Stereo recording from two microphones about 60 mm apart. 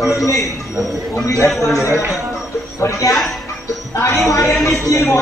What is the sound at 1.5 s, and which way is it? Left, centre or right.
Speech, centre.